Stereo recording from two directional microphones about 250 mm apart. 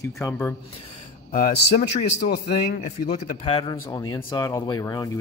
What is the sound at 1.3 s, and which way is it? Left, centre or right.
A man's voice, left.